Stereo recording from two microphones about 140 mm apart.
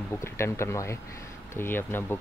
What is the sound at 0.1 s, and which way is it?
Speech, 20° left (ahead or behind).